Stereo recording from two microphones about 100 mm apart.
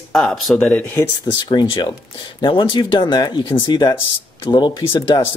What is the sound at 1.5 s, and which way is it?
Speech, 50° left (ahead or behind).